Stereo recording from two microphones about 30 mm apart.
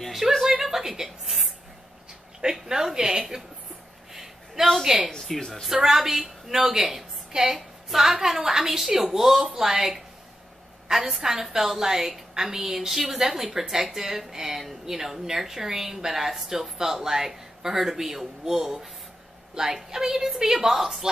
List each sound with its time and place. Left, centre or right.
0.5 s a sound: centre
2.5 s a woman's voice: centre
4.1 s a sound: centre
4.8 s a woman's voice: centre
5.2 s a woman's voice: centre
5.7 s a woman's voice: centre